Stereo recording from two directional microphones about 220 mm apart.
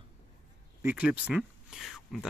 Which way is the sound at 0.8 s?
5° right (ahead or behind).